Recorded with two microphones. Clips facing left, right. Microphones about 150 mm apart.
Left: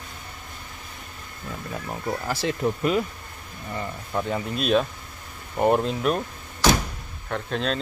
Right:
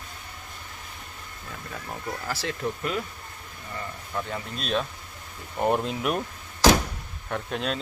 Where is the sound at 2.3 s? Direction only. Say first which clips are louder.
Left 5 dB; 20° left (ahead or behind).